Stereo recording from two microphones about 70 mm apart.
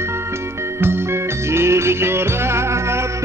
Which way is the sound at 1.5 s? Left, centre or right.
Right.